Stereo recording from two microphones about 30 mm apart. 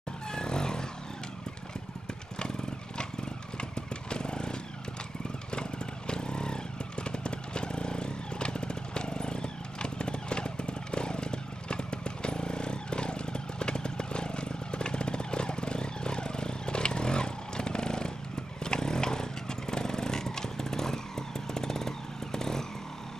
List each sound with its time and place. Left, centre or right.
0.3 s vehicle: left
3.5 s motorcycle: left
18.6 s vehicle: left
21.5 s motorcycle: centre